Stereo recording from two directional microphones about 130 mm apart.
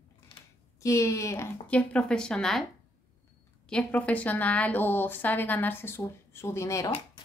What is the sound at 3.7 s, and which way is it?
Speech, 10° left (ahead or behind).